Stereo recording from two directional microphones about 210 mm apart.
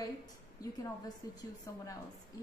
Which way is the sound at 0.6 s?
15° left (ahead or behind).